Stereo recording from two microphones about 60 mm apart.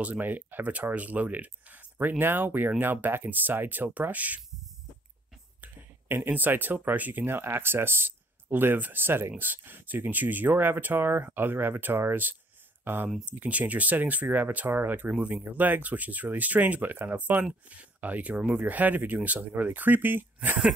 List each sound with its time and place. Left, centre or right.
0.0 s speech: right
6.0 s speech: right
13.2 s speech: right